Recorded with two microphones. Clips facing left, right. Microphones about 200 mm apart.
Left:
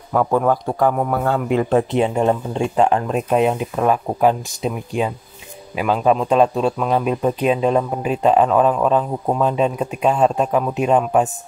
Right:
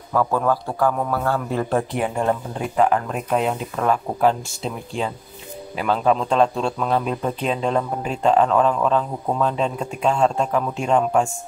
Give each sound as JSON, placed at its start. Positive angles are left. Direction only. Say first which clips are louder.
{"t": 0.1, "sound": "a man's voice", "louder": "left 3 dB", "side_deg": 20}